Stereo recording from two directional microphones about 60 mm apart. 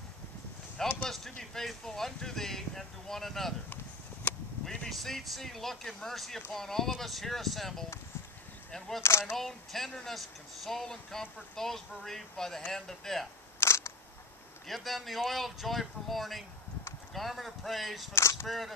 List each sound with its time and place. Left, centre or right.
1.0 s speech: centre
3.7 s a sound: left
4.6 s speech: centre
13.6 s single-lens reflex camera: left
14.7 s speech: centre
18.1 s speech: left